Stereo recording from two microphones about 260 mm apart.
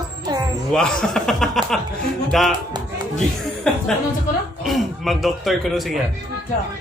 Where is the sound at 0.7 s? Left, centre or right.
Centre.